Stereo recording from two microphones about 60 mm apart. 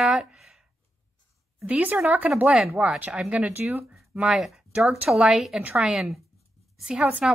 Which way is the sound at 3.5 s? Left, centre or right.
Right.